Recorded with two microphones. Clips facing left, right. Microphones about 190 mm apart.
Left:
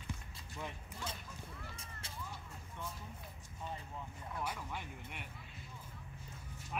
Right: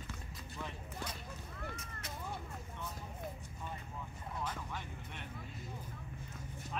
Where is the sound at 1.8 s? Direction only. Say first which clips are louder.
Right 4 dB; 30° left (ahead or behind).